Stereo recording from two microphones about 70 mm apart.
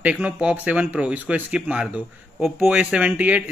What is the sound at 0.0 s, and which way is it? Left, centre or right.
A man's voice, centre.